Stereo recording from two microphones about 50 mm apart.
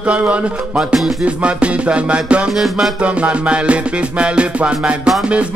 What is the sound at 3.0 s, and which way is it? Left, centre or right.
Music, right.